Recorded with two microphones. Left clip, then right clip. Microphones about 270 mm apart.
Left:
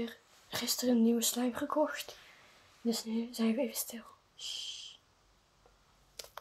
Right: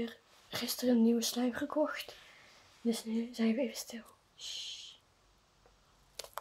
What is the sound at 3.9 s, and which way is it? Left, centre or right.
Speech, right.